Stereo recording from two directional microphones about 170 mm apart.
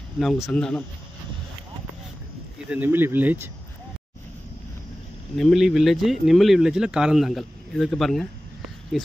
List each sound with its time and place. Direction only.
0.2 s speech: centre (ahead or behind)
2.7 s speech: 10° right (ahead or behind)
5.4 s speech: centre (ahead or behind)